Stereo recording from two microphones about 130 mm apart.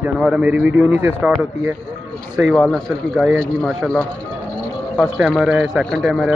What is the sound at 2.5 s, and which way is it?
Speech, 5° left (ahead or behind).